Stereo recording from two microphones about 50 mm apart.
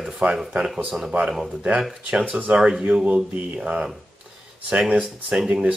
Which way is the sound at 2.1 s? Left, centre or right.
Right.